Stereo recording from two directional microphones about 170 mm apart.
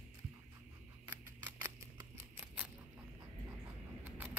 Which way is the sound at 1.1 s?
15° right (ahead or behind).